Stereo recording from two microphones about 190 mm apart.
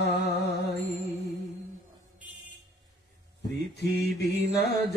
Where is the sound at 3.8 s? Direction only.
60° left (ahead or behind).